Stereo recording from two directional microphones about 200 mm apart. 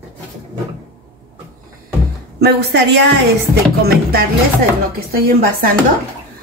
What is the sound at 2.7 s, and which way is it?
A woman's voice, 60° right (ahead or behind).